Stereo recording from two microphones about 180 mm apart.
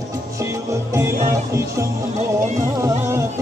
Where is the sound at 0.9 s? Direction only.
15° right (ahead or behind).